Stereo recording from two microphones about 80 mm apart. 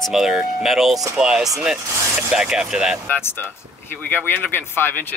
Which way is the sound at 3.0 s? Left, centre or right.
Left.